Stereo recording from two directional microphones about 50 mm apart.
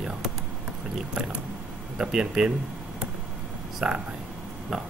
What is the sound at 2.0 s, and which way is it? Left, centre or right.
Speech, centre.